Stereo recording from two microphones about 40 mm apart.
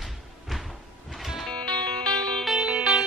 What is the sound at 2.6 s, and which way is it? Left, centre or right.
Music, right.